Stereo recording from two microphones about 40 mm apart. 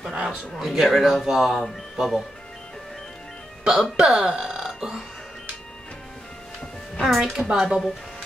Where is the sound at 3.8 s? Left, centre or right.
Centre.